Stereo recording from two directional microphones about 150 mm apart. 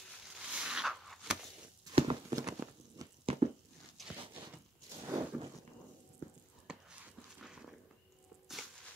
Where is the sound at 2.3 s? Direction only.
25° right (ahead or behind).